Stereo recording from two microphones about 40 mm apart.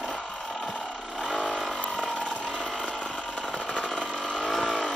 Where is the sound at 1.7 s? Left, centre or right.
Left.